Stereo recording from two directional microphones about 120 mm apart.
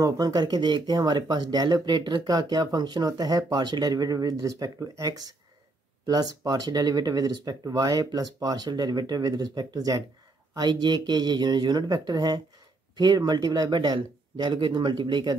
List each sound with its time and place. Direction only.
0.0 s speech: 35° right (ahead or behind)